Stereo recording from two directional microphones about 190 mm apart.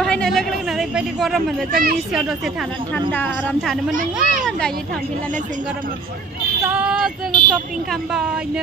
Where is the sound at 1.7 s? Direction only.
50° right (ahead or behind).